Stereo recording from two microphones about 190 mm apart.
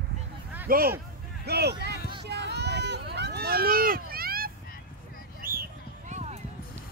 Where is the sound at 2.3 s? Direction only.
60° right (ahead or behind).